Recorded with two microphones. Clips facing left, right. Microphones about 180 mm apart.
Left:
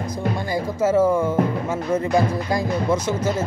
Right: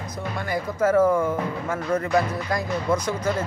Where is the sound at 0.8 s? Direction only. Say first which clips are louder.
Left 1 dB; 5° left (ahead or behind).